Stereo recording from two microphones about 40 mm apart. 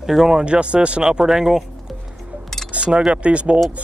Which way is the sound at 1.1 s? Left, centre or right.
Centre.